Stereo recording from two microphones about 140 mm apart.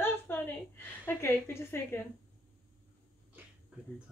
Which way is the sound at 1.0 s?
15° left (ahead or behind).